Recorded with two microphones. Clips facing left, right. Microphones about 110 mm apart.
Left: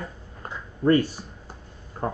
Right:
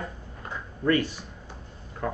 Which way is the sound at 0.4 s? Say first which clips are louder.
Left 4 dB; 35° left (ahead or behind).